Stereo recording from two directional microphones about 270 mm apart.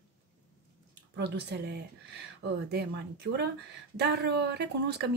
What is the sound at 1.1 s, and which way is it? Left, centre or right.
Speech, right.